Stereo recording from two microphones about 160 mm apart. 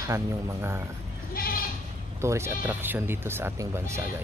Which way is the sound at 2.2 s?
15° right (ahead or behind).